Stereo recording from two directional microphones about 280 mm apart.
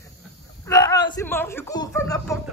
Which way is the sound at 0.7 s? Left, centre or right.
Centre.